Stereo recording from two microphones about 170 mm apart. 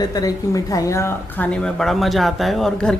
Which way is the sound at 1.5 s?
5° left (ahead or behind).